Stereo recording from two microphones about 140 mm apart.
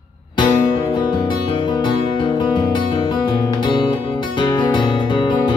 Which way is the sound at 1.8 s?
35° left (ahead or behind).